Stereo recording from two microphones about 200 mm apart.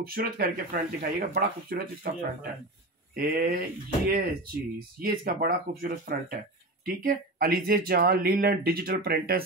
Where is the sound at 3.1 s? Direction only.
50° right (ahead or behind).